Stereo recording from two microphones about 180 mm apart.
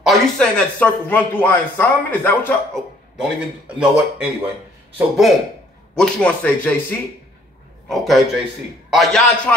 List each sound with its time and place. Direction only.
0.0 s speech: centre (ahead or behind)
3.2 s a man's voice: 5° right (ahead or behind)